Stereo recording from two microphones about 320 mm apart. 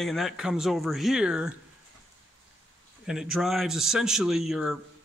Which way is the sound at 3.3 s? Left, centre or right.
Centre.